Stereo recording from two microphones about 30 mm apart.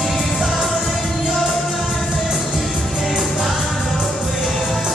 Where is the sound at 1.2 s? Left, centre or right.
Centre.